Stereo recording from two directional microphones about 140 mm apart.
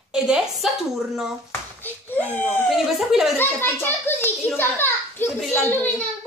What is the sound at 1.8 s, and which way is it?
Speech, 10° left (ahead or behind).